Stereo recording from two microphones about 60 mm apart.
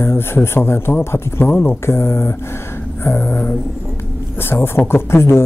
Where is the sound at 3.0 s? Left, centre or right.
Left.